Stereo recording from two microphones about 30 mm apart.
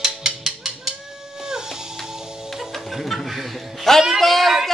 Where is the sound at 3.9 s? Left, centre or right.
Centre.